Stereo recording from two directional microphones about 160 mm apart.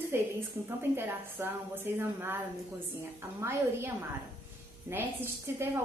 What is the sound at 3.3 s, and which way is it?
A woman's voice, 15° right (ahead or behind).